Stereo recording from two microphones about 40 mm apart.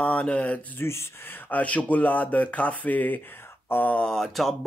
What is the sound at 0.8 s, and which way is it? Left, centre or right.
Speech, left.